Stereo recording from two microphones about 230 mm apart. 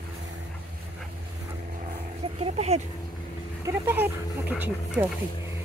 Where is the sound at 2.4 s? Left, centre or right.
Right.